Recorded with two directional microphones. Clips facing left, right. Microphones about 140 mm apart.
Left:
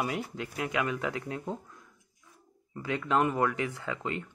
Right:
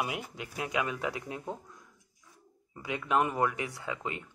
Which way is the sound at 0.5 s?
20° right (ahead or behind).